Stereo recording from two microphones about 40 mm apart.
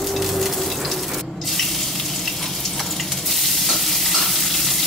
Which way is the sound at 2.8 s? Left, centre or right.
Centre.